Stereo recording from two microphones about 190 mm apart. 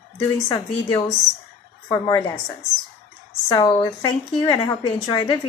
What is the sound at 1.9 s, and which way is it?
Speech, 20° left (ahead or behind).